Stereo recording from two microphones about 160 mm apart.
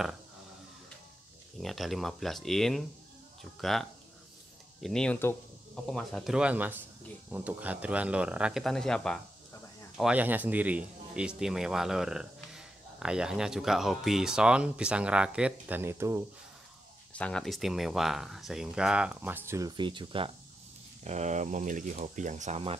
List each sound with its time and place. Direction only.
1.6 s speech: centre (ahead or behind)
9.9 s speech: 10° right (ahead or behind)
17.1 s speech: 5° left (ahead or behind); by 19.7 s 15° right (ahead or behind)
19.8 s speech: 30° right (ahead or behind)
21.0 s speech: 45° right (ahead or behind)